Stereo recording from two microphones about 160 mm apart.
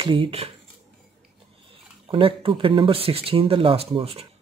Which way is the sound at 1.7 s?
35° right (ahead or behind).